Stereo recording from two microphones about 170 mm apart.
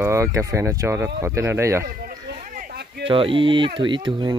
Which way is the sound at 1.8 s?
55° right (ahead or behind).